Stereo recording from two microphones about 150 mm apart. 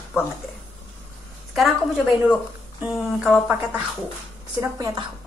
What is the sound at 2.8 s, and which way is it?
Speech, centre (ahead or behind).